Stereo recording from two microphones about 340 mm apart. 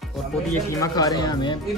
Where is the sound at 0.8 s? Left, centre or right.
Centre.